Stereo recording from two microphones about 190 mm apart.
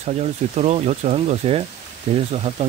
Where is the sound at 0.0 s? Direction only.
35° right (ahead or behind).